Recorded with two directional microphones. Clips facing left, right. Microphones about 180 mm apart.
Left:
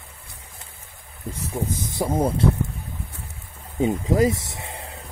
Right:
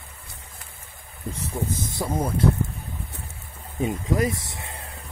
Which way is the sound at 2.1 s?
30° left (ahead or behind).